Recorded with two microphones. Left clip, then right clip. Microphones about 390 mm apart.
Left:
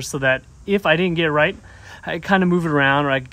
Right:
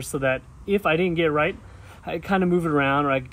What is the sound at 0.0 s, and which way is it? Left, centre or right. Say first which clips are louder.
Speech: left 5 dB; left.